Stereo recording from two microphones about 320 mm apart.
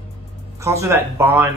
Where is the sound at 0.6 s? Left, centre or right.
Centre.